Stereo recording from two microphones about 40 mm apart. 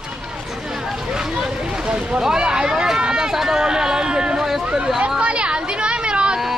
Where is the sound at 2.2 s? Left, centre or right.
Centre.